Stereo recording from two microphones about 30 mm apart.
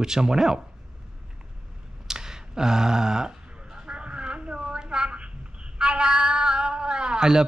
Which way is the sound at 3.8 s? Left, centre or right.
Right.